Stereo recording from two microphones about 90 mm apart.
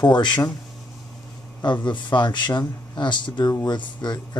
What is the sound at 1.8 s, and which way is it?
Speech, 60° left (ahead or behind).